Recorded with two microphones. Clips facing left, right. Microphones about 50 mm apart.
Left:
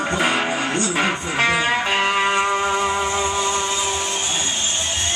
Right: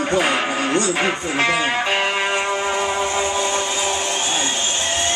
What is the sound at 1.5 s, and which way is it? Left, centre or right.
Music, centre.